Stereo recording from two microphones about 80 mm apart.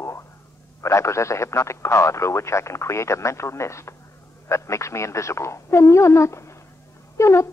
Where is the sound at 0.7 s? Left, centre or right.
Left.